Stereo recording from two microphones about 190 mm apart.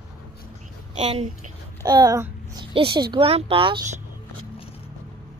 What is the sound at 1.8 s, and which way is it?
A child's voice, 20° right (ahead or behind).